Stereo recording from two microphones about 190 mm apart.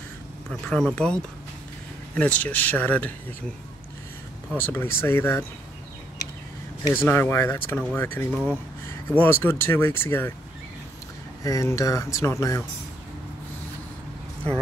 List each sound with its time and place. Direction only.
0.5 s speech: 5° left (ahead or behind)
4.6 s speech: 10° left (ahead or behind)
6.9 s speech: 10° left (ahead or behind)
8.3 s speech: centre (ahead or behind)
9.2 s speech: 10° left (ahead or behind)
11.4 s speech: 20° left (ahead or behind)